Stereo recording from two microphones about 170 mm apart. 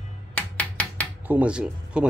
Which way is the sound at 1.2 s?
10° right (ahead or behind).